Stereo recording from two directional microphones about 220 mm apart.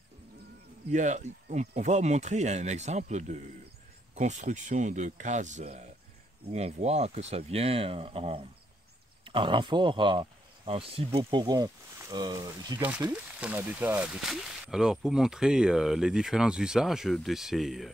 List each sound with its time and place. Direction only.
0.8 s speech: 35° right (ahead or behind); by 17.9 s centre (ahead or behind)